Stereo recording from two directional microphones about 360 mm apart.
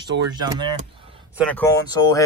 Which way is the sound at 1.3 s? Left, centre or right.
Centre.